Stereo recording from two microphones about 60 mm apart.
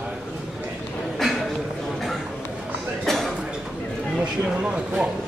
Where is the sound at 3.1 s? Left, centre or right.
Centre.